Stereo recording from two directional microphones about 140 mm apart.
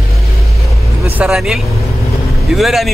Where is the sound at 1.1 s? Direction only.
5° right (ahead or behind).